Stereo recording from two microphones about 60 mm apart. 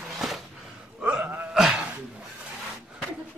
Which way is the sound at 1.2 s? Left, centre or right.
Right.